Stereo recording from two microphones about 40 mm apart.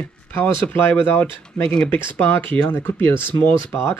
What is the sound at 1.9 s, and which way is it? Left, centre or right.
Speech, left.